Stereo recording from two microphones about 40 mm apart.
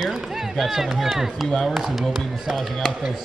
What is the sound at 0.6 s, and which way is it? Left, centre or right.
Speech, centre.